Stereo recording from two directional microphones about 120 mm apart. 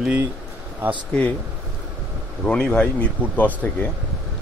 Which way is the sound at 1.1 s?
10° left (ahead or behind).